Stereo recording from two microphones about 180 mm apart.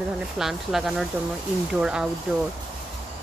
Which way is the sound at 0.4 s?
Centre (ahead or behind).